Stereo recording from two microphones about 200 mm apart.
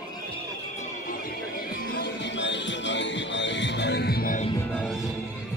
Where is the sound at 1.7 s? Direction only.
45° left (ahead or behind).